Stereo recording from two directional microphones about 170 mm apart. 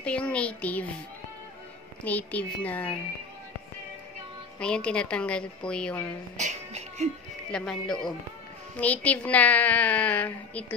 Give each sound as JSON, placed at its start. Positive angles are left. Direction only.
{"t": 0.0, "sound": "a woman's voice", "side_deg": 5}
{"t": 2.0, "sound": "a woman's voice", "side_deg": 10}
{"t": 4.6, "sound": "a woman's voice", "side_deg": 5}
{"t": 6.3, "sound": "speech", "side_deg": -40}
{"t": 7.5, "sound": "a man's voice", "side_deg": 5}